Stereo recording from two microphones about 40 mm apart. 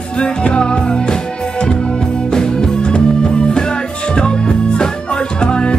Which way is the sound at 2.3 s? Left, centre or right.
Centre.